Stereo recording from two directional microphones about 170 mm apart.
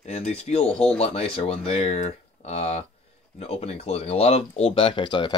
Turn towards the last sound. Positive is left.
turn(degrees=30)  # may be behind; listen again after turning